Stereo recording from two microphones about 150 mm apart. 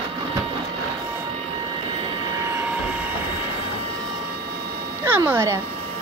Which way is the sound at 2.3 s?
15° right (ahead or behind).